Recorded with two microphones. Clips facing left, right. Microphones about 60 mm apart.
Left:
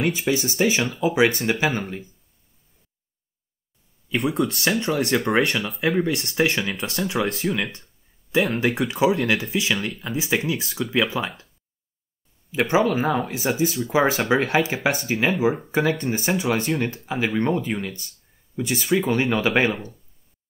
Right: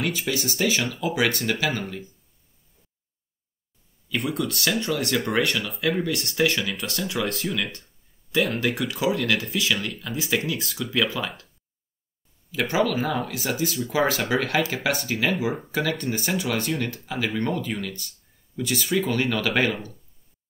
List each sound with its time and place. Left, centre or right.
0.1 s speech: left
4.3 s speech: left
12.4 s speech: left